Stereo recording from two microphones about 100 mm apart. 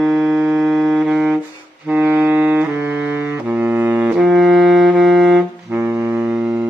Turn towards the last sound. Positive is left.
turn(degrees=0)  # may be behind; listen again after turning